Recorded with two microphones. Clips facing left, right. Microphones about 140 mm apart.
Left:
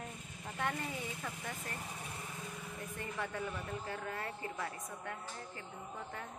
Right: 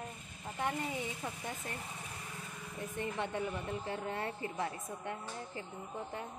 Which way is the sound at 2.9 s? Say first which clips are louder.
Right 4 dB; 25° right (ahead or behind).